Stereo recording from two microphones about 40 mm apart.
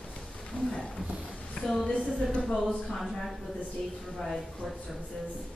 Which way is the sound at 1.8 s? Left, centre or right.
Left.